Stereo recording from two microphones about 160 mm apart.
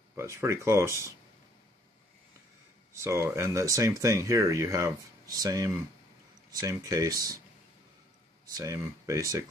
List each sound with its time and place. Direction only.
0.2 s speech: 15° right (ahead or behind)
2.9 s speech: 20° right (ahead or behind)
8.5 s speech: 20° right (ahead or behind)